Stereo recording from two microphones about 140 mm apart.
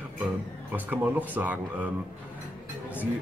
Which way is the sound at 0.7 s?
10° right (ahead or behind).